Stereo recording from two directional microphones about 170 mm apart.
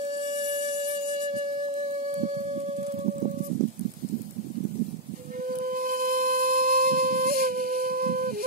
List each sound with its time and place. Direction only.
0.1 s music: 30° right (ahead or behind)
0.5 s music: 45° right (ahead or behind)
1.8 s raindrop: 40° right (ahead or behind)
5.4 s music: 55° right (ahead or behind)